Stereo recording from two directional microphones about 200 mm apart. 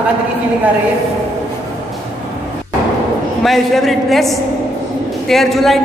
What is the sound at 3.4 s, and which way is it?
A man's voice, centre (ahead or behind).